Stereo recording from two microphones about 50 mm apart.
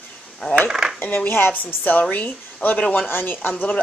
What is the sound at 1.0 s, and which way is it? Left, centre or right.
Speech, left.